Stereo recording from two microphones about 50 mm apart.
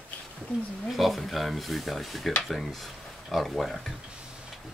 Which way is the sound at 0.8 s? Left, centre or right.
Centre.